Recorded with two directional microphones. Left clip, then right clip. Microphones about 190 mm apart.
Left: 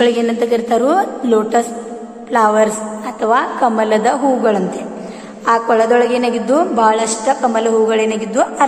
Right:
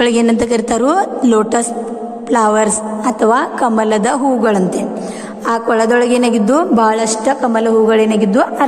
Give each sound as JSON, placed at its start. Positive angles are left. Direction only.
{"t": 0.0, "sound": "a woman's voice", "side_deg": -40}